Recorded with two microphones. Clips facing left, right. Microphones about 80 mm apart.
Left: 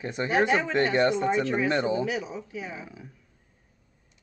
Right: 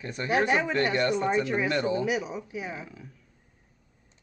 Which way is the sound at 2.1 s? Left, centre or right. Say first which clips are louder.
Right 2 dB; centre.